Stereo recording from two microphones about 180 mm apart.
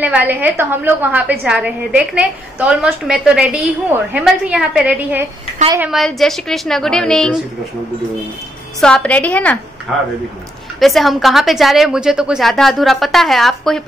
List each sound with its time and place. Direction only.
0.0 s a woman's voice: 10° right (ahead or behind)
8.8 s a woman's voice: 5° left (ahead or behind)
9.9 s a woman's voice: 5° right (ahead or behind)